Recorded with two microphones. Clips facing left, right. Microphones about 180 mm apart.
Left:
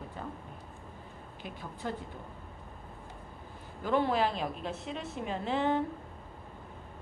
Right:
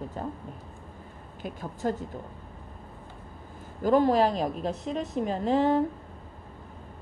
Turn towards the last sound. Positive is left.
turn(degrees=-40)  # may be behind; listen again after turning